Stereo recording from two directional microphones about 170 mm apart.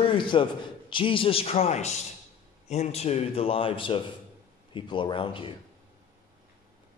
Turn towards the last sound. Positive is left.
turn(degrees=30)  # may be behind; listen again after turning